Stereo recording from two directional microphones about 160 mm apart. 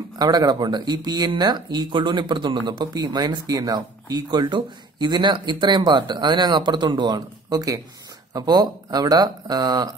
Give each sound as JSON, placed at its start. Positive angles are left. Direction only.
{"t": 0.2, "sound": "speech", "side_deg": -25}